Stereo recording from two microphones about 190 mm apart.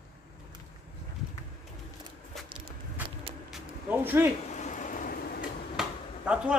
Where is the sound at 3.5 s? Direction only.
10° right (ahead or behind).